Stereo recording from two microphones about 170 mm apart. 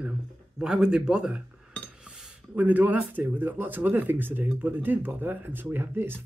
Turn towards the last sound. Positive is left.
turn(degrees=-15)  # may be behind; listen again after turning